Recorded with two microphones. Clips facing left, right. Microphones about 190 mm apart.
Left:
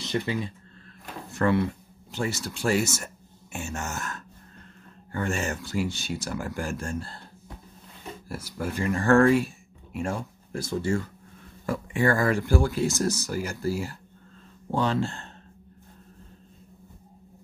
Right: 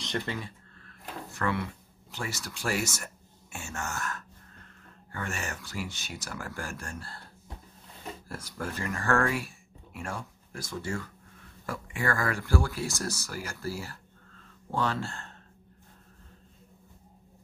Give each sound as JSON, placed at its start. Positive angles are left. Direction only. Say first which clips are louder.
{"t": 0.0, "sound": "speech", "louder": "left 5 dB", "side_deg": 5}
{"t": 1.3, "sound": "speech", "louder": "left 8 dB", "side_deg": 30}
{"t": 8.3, "sound": "speech", "louder": "left 6 dB", "side_deg": 10}